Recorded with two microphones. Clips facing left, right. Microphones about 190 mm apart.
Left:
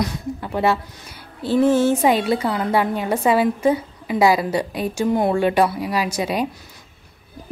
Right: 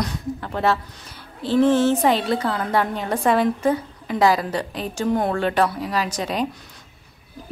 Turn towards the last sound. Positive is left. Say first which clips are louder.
# left 2 dB
turn(degrees=10)  # may be behind; listen again after turning